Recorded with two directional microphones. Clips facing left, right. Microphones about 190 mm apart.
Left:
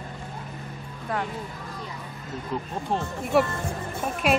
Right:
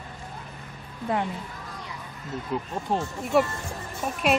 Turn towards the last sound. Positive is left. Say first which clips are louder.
# even
turn(degrees=0)  # may be behind; listen again after turning